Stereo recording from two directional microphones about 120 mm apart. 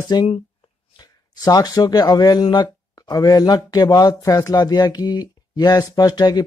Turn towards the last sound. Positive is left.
turn(degrees=35)  # may be behind; listen again after turning